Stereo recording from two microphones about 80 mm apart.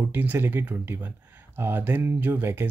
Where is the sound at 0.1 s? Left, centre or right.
Right.